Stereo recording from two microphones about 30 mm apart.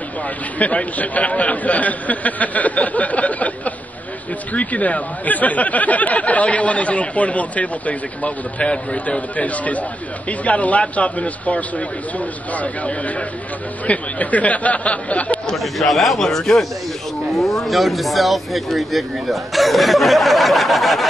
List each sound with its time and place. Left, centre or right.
0.6 s speech: left
8.5 s speech: left
13.8 s speech: left
15.5 s speech: centre
16.2 s speech: centre
17.3 s speech: centre